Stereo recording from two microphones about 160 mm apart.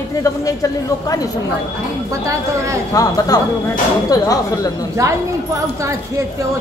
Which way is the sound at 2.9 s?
20° left (ahead or behind).